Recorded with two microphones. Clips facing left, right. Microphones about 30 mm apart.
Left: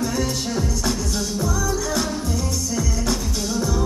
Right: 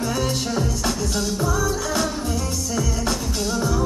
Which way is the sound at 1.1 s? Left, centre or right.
Right.